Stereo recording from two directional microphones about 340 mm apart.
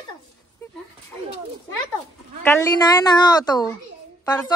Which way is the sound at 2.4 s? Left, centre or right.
Centre.